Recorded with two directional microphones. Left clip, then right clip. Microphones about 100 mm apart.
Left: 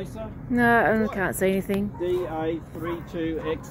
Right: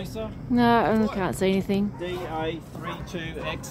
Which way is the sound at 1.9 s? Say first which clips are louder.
Left 4 dB; 60° right (ahead or behind).